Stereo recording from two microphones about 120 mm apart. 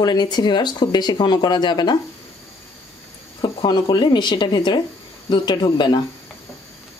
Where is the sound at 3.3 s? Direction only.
40° left (ahead or behind).